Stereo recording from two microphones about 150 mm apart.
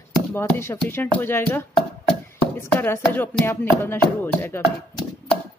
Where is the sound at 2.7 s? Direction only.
15° left (ahead or behind).